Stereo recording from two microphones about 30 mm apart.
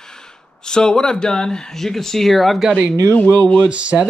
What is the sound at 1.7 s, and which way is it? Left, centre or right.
Speech, centre.